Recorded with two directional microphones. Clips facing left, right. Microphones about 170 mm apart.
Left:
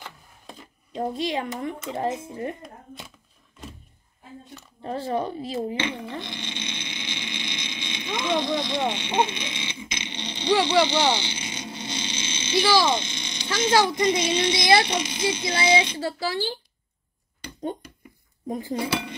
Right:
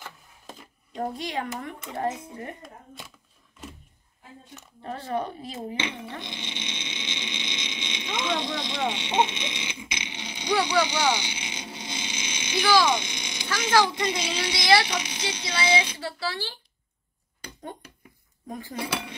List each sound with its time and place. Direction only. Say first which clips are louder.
0.9 s speech: left 4 dB; 20° left (ahead or behind)
4.8 s speech: left 3 dB; 25° left (ahead or behind)
6.1 s a sound: left 3 dB; 15° right (ahead or behind)
8.1 s speech: left 3 dB; 15° left (ahead or behind)
8.4 s speech: left 5 dB; 20° right (ahead or behind)
11.1 s a sound: left 3 dB; 15° right (ahead or behind)
13.5 s speech: left 2 dB; 20° left (ahead or behind)
15.0 s speech: left 4 dB; 5° right (ahead or behind)
15.6 s speech: left 3 dB; 25° left (ahead or behind)
18.5 s speech: left 8 dB; 25° left (ahead or behind)
18.8 s speech: left 1 dB; centre (ahead or behind)